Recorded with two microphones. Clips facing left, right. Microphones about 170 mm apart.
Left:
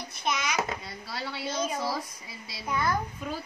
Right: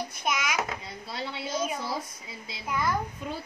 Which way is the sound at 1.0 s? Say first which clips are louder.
Right 1 dB; 20° right (ahead or behind).